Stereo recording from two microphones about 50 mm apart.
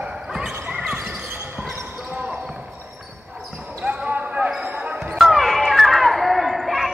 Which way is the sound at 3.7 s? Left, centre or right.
Right.